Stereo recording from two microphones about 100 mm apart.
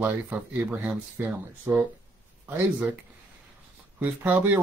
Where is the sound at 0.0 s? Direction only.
20° right (ahead or behind).